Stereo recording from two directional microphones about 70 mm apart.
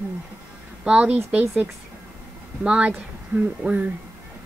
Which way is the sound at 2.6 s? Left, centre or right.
Centre.